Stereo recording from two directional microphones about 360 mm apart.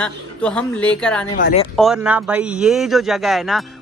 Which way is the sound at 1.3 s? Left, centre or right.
Centre.